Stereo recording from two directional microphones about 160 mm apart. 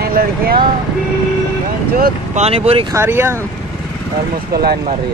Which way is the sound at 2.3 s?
40° right (ahead or behind).